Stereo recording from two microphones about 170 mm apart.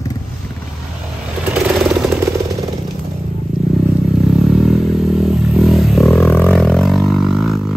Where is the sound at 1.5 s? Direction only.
5° right (ahead or behind).